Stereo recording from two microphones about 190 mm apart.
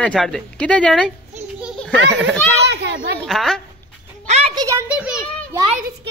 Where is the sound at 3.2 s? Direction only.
Centre (ahead or behind).